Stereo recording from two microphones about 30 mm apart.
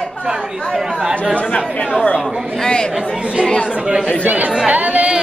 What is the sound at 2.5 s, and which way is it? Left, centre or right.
Speech, left.